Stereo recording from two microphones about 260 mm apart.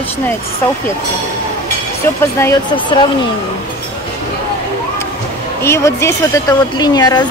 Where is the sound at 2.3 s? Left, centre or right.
Centre.